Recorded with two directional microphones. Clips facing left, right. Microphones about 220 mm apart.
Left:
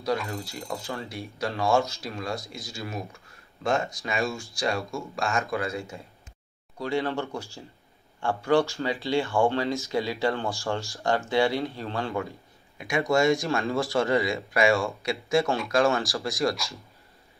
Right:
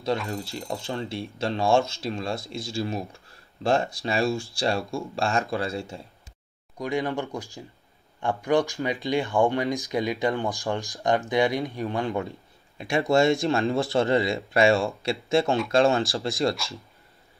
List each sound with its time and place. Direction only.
0.2 s speech: centre (ahead or behind)
0.7 s speech: 30° right (ahead or behind)
6.8 s speech: 15° right (ahead or behind)